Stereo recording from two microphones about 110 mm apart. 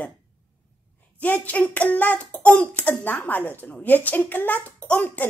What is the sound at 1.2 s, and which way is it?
Hands, 15° left (ahead or behind).